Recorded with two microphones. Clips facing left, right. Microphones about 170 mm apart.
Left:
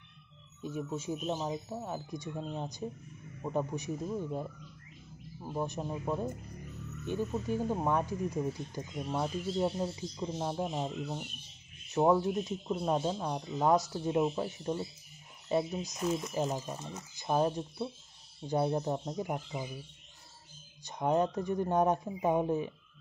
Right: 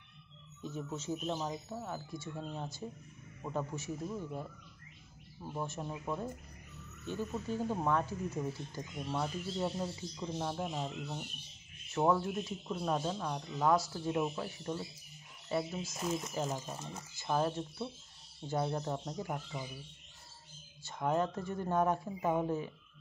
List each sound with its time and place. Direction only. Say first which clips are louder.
0.6 s speech: left 4 dB; 15° left (ahead or behind)
5.4 s speech: left 4 dB; 20° left (ahead or behind)
20.8 s speech: left 4 dB; 20° left (ahead or behind)